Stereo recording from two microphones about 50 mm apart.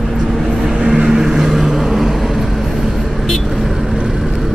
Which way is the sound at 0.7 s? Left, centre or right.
Centre.